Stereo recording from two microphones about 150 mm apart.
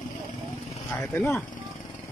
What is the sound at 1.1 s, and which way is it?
Speech, 15° left (ahead or behind).